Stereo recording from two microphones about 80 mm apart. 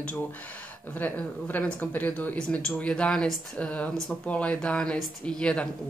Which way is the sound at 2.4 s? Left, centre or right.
Centre.